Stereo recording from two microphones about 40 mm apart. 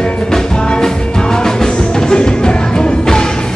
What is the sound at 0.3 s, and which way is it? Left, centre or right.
Music, centre.